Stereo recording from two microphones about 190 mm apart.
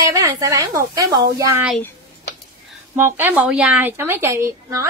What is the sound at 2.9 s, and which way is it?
A woman's voice, 10° right (ahead or behind).